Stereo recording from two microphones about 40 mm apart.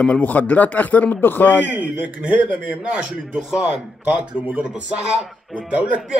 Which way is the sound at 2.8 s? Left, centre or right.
Right.